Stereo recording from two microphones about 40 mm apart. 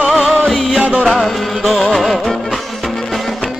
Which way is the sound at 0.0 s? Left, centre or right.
Centre.